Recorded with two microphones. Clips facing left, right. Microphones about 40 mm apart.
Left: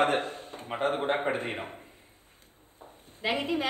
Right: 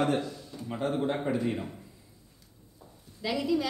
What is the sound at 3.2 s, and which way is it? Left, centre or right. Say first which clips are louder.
Speech: even; left.